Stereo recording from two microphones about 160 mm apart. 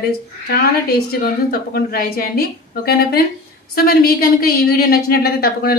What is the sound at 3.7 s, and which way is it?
A woman's voice, 70° left (ahead or behind).